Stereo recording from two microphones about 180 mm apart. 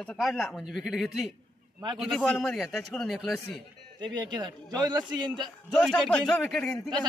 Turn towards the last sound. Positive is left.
turn(degrees=5)  # may be behind; listen again after turning